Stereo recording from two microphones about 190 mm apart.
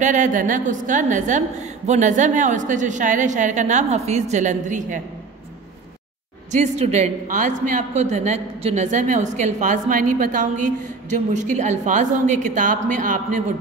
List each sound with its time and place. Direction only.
0.0 s a woman's voice: 40° right (ahead or behind)
6.5 s a woman's voice: 35° right (ahead or behind)